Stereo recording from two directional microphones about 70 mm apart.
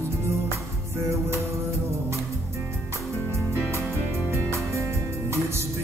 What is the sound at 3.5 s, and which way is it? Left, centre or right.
Music, right.